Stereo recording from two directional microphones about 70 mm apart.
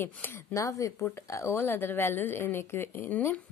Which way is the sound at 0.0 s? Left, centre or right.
Left.